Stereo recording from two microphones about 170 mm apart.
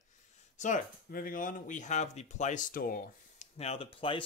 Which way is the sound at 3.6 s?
35° left (ahead or behind).